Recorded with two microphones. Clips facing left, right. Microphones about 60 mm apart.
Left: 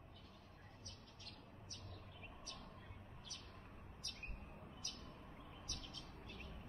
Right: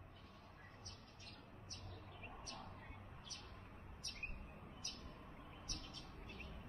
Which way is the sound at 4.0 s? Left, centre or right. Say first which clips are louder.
Right 3 dB; right.